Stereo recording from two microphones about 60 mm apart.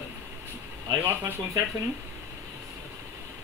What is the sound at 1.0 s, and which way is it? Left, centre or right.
Speech, right.